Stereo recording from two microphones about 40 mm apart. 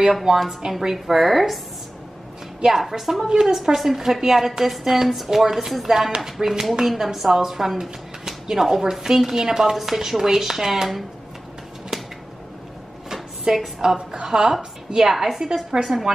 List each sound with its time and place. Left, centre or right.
0.1 s a woman's voice: centre
0.9 s a woman's voice: centre
2.7 s a woman's voice: centre
11.9 s a sound: centre
13.5 s a woman's voice: right